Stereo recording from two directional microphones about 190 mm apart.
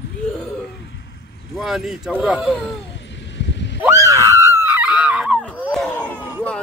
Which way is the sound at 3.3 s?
70° left (ahead or behind).